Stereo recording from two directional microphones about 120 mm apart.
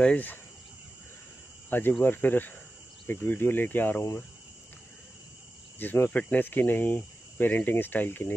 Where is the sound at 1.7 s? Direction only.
15° left (ahead or behind).